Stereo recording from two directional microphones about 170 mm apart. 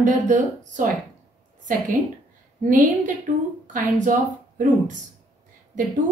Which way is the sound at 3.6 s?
50° right (ahead or behind).